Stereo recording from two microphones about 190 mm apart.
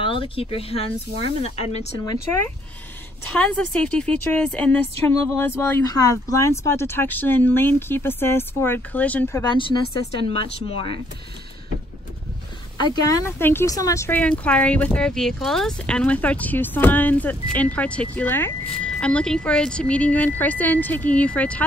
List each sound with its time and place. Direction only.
0.0 s speech: 30° left (ahead or behind)
3.3 s speech: 5° left (ahead or behind)
9.4 s a woman's voice: 25° left (ahead or behind)
12.7 s speech: 20° left (ahead or behind)